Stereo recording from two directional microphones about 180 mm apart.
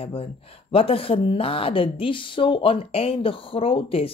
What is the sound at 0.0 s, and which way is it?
Speech, 30° left (ahead or behind).